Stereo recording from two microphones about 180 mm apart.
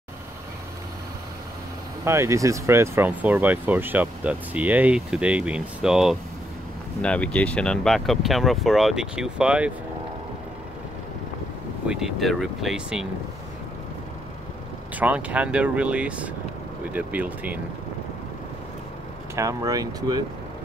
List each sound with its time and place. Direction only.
2.0 s speech: 15° right (ahead or behind)
11.9 s speech: centre (ahead or behind)
15.0 s speech: 10° right (ahead or behind)
19.3 s speech: 20° right (ahead or behind)